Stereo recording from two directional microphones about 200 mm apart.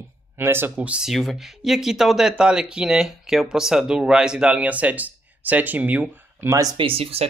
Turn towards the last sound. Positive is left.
turn(degrees=-30)  # may be behind; listen again after turning